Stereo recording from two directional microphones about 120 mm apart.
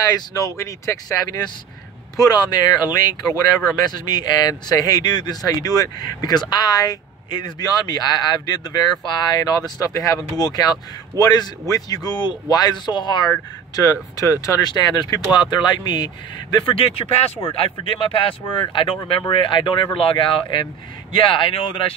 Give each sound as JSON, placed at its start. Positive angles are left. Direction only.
{"t": 0.0, "sound": "speech", "side_deg": 30}
{"t": 16.7, "sound": "speech", "side_deg": 50}